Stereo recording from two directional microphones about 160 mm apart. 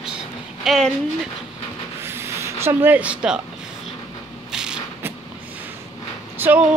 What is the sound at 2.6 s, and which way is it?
Speech, 10° right (ahead or behind).